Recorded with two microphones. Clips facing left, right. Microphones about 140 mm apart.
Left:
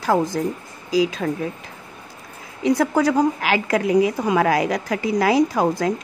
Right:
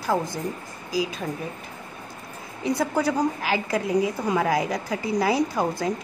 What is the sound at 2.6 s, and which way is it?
A woman's voice, 90° left.